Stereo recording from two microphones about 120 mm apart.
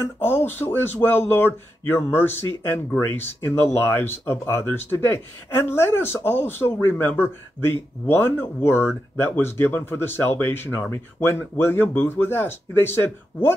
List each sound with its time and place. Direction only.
0.2 s speech: 20° left (ahead or behind)